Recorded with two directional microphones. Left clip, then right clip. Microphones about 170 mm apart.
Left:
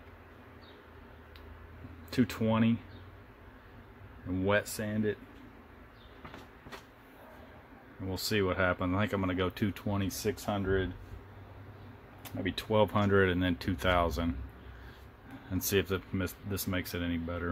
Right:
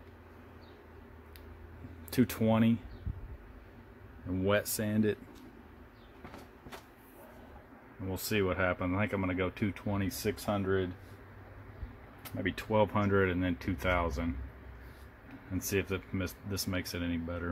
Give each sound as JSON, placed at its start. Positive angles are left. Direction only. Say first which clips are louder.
{"t": 2.0, "sound": "speech", "louder": "right 1 dB", "side_deg": -15}
{"t": 4.4, "sound": "speech", "louder": "left 1 dB", "side_deg": -10}
{"t": 8.1, "sound": "speech", "louder": "left 1 dB", "side_deg": 0}
{"t": 10.0, "sound": "speech", "louder": "even", "side_deg": -5}
{"t": 12.4, "sound": "speech", "louder": "left 1 dB", "side_deg": 0}
{"t": 15.5, "sound": "speech", "louder": "left 3 dB", "side_deg": 10}